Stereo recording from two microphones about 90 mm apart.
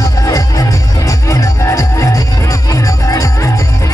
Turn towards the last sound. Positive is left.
turn(degrees=35)  # may be behind; listen again after turning